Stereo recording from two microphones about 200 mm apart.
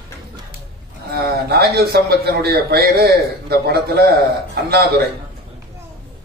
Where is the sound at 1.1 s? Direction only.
50° right (ahead or behind).